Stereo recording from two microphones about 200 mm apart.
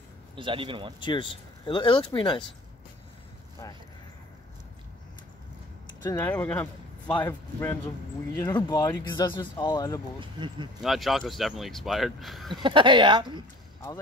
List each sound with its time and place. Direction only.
0.4 s speech: 25° right (ahead or behind)
0.9 s speech: 25° left (ahead or behind)
6.0 s speech: 10° left (ahead or behind)
7.2 s speech: 20° left (ahead or behind)
10.2 s speech: 25° right (ahead or behind)
10.8 s speech: centre (ahead or behind)
12.6 s speech: 25° right (ahead or behind)